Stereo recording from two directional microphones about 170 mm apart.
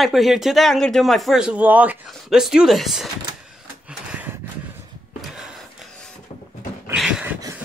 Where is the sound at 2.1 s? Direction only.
Centre (ahead or behind).